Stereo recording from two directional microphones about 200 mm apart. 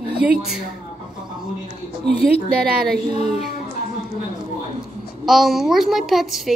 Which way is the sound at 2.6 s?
50° right (ahead or behind).